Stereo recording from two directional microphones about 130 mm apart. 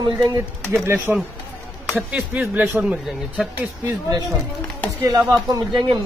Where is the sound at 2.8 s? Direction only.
5° right (ahead or behind).